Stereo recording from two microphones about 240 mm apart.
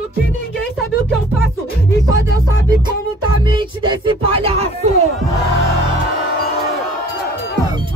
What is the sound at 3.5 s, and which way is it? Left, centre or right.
Music, right.